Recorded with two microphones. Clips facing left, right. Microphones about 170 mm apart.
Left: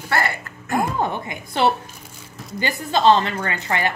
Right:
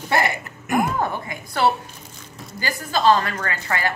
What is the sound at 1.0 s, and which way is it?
Speech, 20° left (ahead or behind).